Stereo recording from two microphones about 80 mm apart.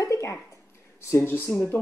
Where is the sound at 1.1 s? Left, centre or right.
Left.